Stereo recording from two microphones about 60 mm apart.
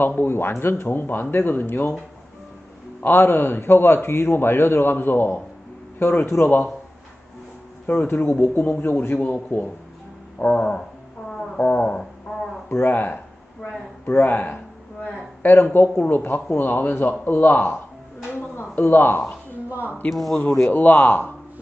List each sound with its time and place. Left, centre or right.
0.0 s a man's voice: left
3.0 s a man's voice: left
6.2 s a man's voice: left
7.8 s speech: left
8.1 s a man's voice: left
10.4 s a man's voice: left
18.5 s a sound: left
20.1 s speech: centre
20.6 s a man's voice: left